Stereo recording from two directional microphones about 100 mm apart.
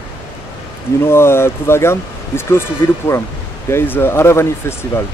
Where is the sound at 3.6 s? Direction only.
25° left (ahead or behind).